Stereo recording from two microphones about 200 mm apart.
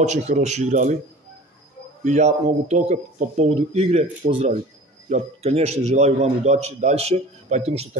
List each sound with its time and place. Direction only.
0.0 s a man's voice: 35° right (ahead or behind)
2.0 s a man's voice: 35° right (ahead or behind)